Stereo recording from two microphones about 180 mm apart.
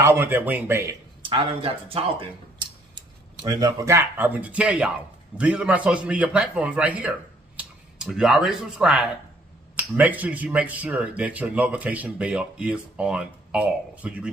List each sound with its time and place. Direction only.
0.0 s speech: 10° right (ahead or behind)
1.2 s a man's voice: 30° right (ahead or behind); by 14.3 s 5° right (ahead or behind)